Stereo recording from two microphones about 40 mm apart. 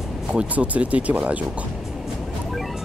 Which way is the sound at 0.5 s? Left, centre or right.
Right.